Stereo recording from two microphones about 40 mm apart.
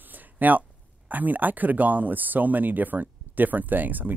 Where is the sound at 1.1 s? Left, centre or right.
Right.